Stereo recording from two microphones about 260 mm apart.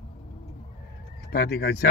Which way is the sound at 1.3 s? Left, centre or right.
Left.